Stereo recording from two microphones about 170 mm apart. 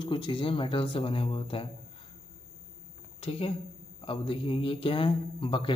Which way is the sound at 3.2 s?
35° left (ahead or behind).